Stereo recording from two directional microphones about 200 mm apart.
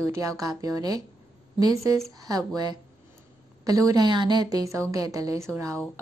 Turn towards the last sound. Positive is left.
turn(degrees=-15)  # may be behind; listen again after turning